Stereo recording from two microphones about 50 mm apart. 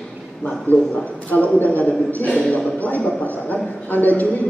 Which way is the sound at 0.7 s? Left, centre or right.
Left.